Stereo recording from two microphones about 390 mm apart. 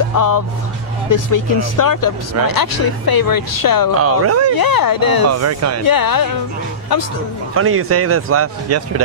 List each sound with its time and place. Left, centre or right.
1.1 s speech: left
4.0 s speech: right
4.6 s speech: left
5.3 s speech: right
5.9 s speech: left
7.5 s speech: right